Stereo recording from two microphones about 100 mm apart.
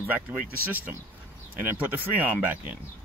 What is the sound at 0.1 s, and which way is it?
Speech, 15° right (ahead or behind).